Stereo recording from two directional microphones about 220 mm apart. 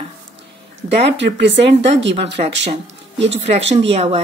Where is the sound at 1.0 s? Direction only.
55° right (ahead or behind).